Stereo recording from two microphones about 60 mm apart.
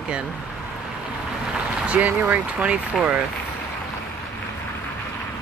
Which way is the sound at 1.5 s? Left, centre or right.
Right.